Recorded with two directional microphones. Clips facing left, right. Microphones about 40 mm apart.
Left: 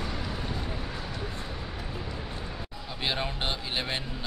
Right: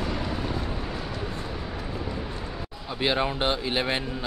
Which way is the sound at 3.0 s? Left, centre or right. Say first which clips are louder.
Right 6 dB; centre.